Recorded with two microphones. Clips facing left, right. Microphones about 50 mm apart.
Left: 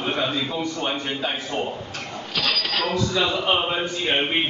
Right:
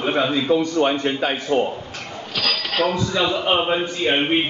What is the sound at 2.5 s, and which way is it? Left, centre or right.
A man's voice, centre.